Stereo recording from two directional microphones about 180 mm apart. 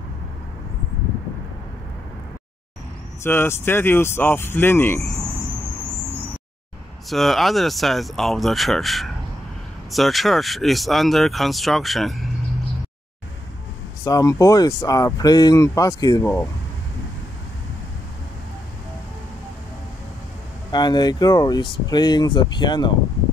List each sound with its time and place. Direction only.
3.3 s speech: 15° left (ahead or behind)
7.1 s speech: centre (ahead or behind)
14.0 s speech: 20° left (ahead or behind)
20.7 s speech: 25° left (ahead or behind)